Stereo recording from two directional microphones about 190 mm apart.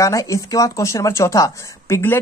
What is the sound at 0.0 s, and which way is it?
Speech, 15° left (ahead or behind).